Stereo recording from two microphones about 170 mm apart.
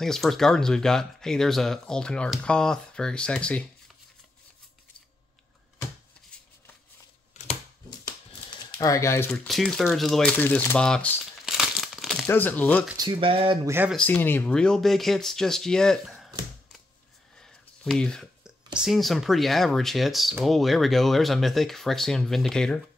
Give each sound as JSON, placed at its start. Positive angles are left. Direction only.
{"t": 0.0, "sound": "speech", "side_deg": 0}
{"t": 8.5, "sound": "typing", "side_deg": 25}
{"t": 9.3, "sound": "speech", "side_deg": 0}
{"t": 11.4, "sound": "crumpling", "side_deg": -5}
{"t": 12.3, "sound": "speech", "side_deg": 10}
{"t": 12.9, "sound": "speech", "side_deg": -30}
{"t": 13.7, "sound": "speech", "side_deg": -10}
{"t": 13.9, "sound": "speech", "side_deg": 10}
{"t": 17.4, "sound": "a sound", "side_deg": 5}
{"t": 18.8, "sound": "speech", "side_deg": 0}